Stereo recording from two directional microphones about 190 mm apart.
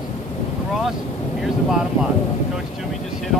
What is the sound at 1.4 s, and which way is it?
Wind noise, centre (ahead or behind).